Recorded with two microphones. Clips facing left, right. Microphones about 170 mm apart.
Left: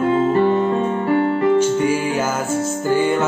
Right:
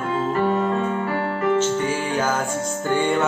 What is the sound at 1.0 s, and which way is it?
Music, 20° left (ahead or behind).